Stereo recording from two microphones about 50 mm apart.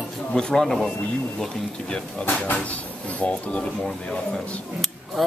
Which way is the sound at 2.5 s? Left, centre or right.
Left.